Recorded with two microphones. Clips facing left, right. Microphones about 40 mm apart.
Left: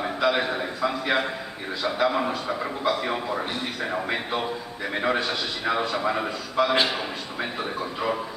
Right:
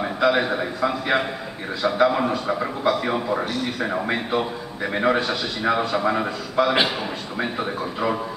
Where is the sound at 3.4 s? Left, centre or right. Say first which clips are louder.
Right 4 dB; left.